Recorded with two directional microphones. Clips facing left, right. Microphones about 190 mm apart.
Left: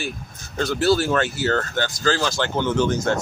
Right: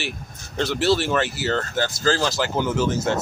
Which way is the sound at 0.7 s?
Centre (ahead or behind).